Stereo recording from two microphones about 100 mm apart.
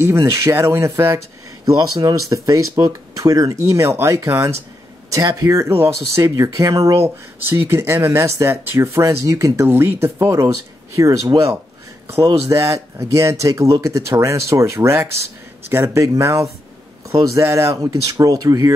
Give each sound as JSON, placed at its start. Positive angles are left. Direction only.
{"t": 0.0, "sound": "speech", "side_deg": -25}
{"t": 1.8, "sound": "speech", "side_deg": -40}
{"t": 7.4, "sound": "speech", "side_deg": -20}